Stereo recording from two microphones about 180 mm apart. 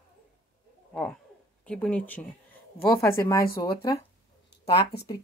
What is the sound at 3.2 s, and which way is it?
Speech, 20° left (ahead or behind).